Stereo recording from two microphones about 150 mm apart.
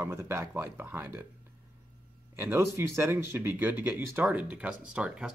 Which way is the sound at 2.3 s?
15° right (ahead or behind).